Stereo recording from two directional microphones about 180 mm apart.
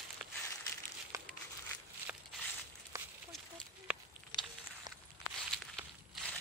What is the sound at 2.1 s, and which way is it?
Walk, 10° right (ahead or behind).